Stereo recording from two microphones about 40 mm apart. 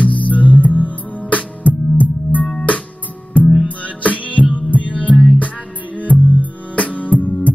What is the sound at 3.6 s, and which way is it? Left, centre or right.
Music, left.